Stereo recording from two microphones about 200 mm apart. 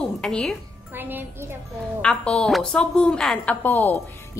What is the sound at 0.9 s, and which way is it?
Speech, 10° right (ahead or behind).